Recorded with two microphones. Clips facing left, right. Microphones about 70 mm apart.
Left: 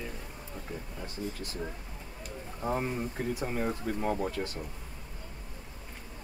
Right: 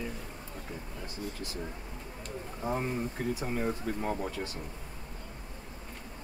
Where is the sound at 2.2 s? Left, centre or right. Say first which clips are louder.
Left 1 dB; centre.